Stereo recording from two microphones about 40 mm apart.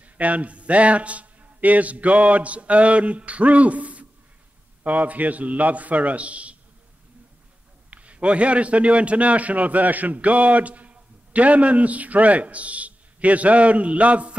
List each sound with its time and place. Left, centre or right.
0.0 s a man's voice: right
7.9 s a man's voice: right